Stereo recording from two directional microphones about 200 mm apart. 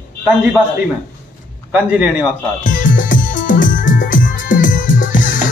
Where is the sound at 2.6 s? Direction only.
40° left (ahead or behind).